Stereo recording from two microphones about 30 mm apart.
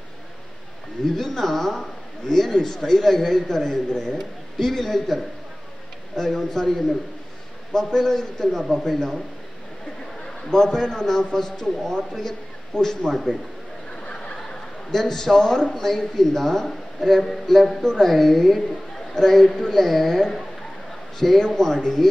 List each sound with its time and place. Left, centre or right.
1.1 s a woman's voice: centre
10.2 s a woman's voice: left
14.0 s a sound: left
14.4 s a sound: centre
15.7 s a woman's voice: centre
18.1 s a woman's voice: centre
21.5 s a woman's voice: centre